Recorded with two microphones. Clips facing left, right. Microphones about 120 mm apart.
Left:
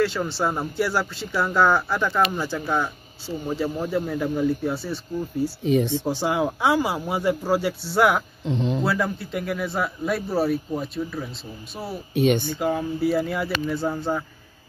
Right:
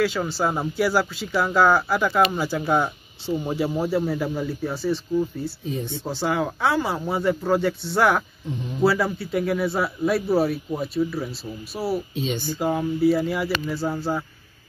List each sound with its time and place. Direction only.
0.0 s speech: centre (ahead or behind)
5.6 s speech: 90° left
6.0 s speech: 15° left (ahead or behind)
8.5 s speech: 90° left
8.8 s speech: 5° right (ahead or behind)
12.1 s speech: 65° left (ahead or behind)
13.0 s speech: centre (ahead or behind)